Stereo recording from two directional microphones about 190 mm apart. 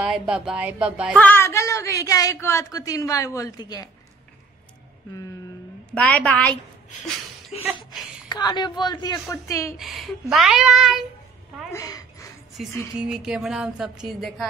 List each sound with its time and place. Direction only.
0.0 s music: 5° right (ahead or behind)
1.1 s a woman's voice: 10° left (ahead or behind)
5.9 s a woman's voice: 5° left (ahead or behind)
8.3 s a woman's voice: 20° left (ahead or behind)
9.8 s music: centre (ahead or behind)
11.7 s a sound: 20° left (ahead or behind)
12.6 s music: centre (ahead or behind)